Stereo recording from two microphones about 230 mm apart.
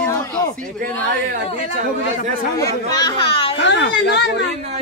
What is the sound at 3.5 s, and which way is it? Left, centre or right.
Speech, left.